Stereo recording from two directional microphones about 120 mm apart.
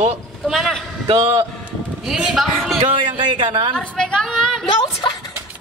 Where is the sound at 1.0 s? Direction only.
50° right (ahead or behind).